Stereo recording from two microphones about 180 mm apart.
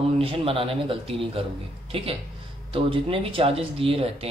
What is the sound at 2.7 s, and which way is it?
Speech, 30° right (ahead or behind).